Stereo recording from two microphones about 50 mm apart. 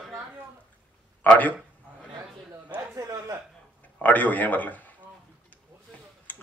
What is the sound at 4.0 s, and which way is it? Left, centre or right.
Speech, left.